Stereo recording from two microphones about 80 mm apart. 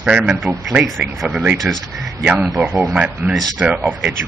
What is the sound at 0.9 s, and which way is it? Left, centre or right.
Speech, centre.